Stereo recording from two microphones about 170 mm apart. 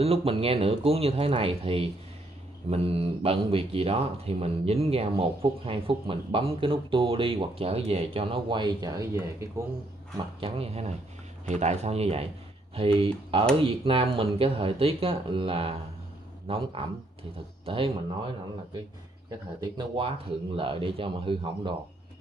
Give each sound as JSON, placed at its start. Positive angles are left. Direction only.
{"t": 0.0, "sound": "speech", "side_deg": -35}
{"t": 10.4, "sound": "speech", "side_deg": -35}
{"t": 19.6, "sound": "speech", "side_deg": -30}